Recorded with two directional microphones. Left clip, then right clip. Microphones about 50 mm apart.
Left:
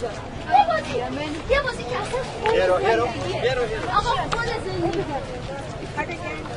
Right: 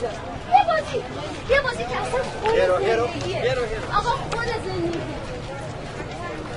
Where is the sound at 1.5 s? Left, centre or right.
Right.